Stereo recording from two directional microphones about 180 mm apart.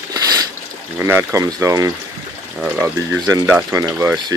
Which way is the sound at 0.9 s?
15° right (ahead or behind).